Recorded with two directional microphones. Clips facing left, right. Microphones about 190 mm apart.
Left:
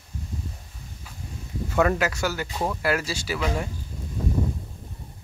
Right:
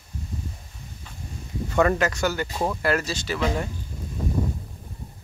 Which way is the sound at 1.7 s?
5° left (ahead or behind).